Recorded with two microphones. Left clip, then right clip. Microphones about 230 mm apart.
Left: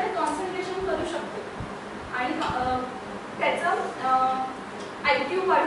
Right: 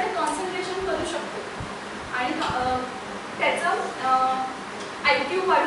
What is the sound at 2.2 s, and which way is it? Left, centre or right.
Speech, centre.